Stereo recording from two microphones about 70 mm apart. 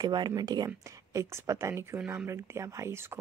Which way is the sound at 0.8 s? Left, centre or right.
Right.